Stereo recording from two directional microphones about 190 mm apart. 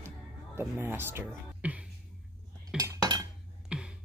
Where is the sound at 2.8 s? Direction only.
20° right (ahead or behind).